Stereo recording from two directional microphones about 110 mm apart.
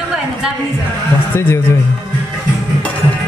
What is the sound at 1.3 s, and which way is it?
Speech, 20° left (ahead or behind).